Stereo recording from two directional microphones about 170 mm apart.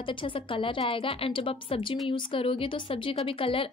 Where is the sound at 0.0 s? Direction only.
30° left (ahead or behind).